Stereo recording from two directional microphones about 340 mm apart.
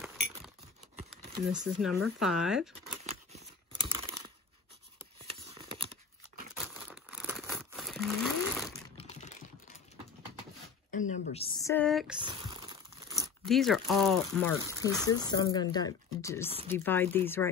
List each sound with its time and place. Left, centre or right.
1.5 s speech: centre
3.0 s tearing: centre
5.2 s a sound: centre
6.6 s crumpling: centre
8.9 s typing: centre
10.9 s a sound: left; by 12.2 s centre
12.2 s crunch: centre
13.5 s speech: centre